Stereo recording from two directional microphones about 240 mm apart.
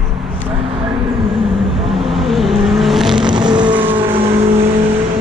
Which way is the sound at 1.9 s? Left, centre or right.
Centre.